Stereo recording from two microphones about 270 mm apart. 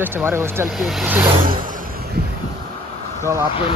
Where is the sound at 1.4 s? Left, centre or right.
Right.